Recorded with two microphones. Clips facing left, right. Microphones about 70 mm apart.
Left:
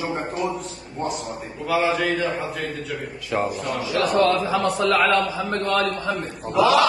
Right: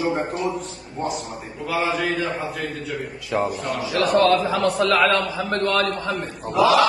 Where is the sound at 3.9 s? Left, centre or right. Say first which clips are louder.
Right 2 dB; right.